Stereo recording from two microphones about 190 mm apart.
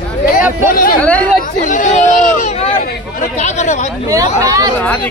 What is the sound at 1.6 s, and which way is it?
Hubbub, 40° left (ahead or behind).